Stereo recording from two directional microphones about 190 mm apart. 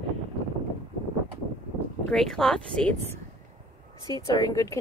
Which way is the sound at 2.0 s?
5° left (ahead or behind).